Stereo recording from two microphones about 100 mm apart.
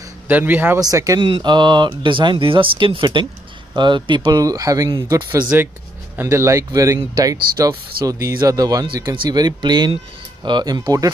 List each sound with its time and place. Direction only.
0.3 s a man's voice: 20° right (ahead or behind)
0.7 s speech: 35° right (ahead or behind)
1.2 s speech: 55° right (ahead or behind)
4.4 s speech: 35° right (ahead or behind)
5.2 s speech: 40° right (ahead or behind)
6.2 s speech: 30° right (ahead or behind)
9.1 s speech: 50° right (ahead or behind)